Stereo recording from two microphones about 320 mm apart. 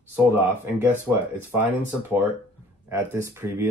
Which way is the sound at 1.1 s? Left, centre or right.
Centre.